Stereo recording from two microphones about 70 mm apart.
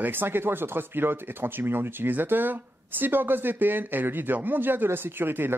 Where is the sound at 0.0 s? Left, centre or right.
Right.